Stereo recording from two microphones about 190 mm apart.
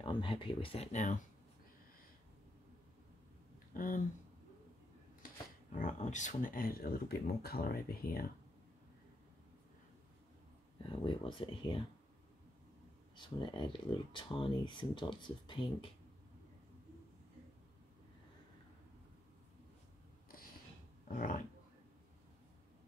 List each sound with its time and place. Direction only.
0.0 s speech: 25° left (ahead or behind)
3.7 s speech: 45° left (ahead or behind)
5.2 s speech: 40° left (ahead or behind)
10.9 s speech: 25° left (ahead or behind)
13.1 s speech: 25° left (ahead or behind)
21.1 s dog: 40° left (ahead or behind)